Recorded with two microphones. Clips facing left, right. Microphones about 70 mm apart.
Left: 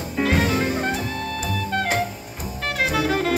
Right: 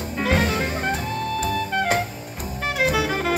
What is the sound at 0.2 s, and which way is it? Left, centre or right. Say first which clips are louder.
Music: left 1 dB; centre.